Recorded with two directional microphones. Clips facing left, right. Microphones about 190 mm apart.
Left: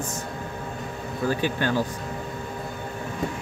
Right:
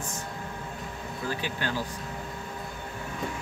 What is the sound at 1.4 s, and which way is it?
Speech, 55° left (ahead or behind).